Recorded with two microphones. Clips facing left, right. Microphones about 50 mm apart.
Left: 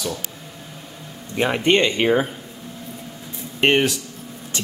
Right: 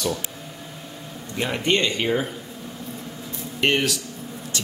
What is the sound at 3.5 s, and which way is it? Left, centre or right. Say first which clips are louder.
Speech: left 4 dB; left.